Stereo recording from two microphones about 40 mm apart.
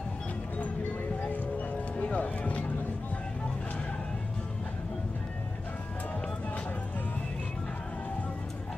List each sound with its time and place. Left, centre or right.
2.0 s music: left